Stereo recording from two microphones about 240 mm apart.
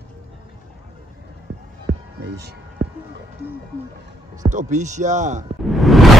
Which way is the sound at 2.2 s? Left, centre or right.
Right.